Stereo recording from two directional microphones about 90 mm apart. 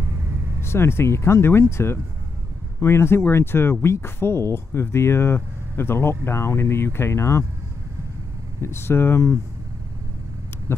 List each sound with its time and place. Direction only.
0.6 s speech: 25° left (ahead or behind)
8.5 s speech: 25° left (ahead or behind)